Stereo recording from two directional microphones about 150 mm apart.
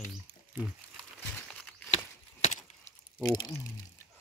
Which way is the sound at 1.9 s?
50° left (ahead or behind).